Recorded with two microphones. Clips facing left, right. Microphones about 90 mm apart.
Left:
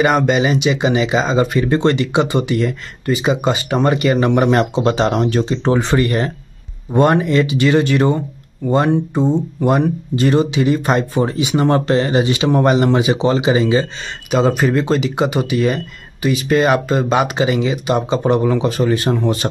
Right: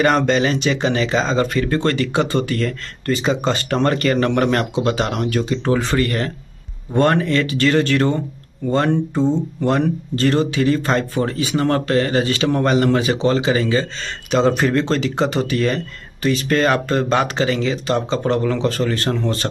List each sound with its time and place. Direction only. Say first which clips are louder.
0.0 s speech: left 1 dB; 5° left (ahead or behind)
14.3 s speech: left 1 dB; 5° left (ahead or behind)